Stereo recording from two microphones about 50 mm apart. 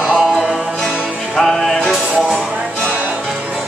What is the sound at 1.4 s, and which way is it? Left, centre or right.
Music, centre.